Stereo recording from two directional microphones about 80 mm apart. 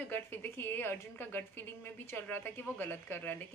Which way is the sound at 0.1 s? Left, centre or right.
Left.